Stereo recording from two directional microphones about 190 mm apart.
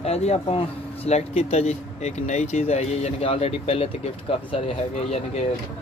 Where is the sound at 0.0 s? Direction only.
35° left (ahead or behind).